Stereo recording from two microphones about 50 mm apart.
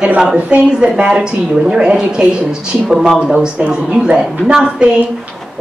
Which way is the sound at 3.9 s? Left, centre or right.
Centre.